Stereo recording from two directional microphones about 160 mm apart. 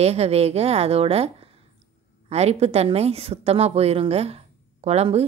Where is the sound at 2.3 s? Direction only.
40° right (ahead or behind).